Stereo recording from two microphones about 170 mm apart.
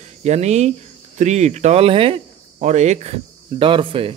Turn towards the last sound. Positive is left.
turn(degrees=-30)  # may be behind; listen again after turning